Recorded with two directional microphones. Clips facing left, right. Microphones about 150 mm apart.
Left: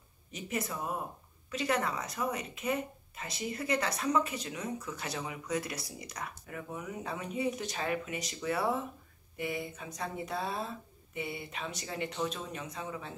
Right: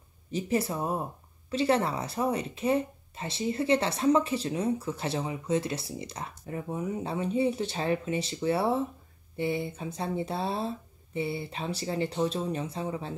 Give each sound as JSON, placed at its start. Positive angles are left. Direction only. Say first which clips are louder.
{"t": 0.3, "sound": "speech", "louder": "right 8 dB", "side_deg": -30}